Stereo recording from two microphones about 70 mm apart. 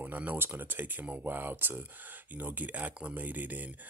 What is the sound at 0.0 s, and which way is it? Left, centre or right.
Speech, right.